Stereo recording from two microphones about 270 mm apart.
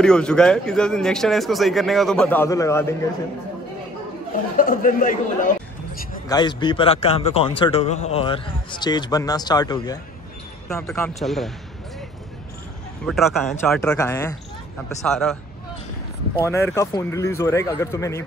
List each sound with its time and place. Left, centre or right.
0.0 s speech: centre
4.6 s speech: left
6.2 s a man's voice: centre
13.0 s a man's voice: centre
16.4 s a man's voice: centre